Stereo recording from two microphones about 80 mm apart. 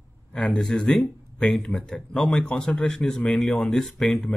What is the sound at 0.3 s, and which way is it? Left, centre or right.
Speech, centre.